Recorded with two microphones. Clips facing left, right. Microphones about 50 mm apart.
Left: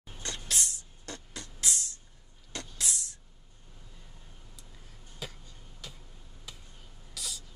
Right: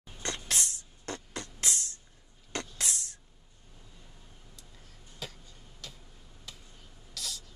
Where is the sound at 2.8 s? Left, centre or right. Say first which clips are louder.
Even; right.